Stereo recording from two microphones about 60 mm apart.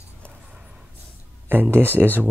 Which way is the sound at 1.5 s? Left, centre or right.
Right.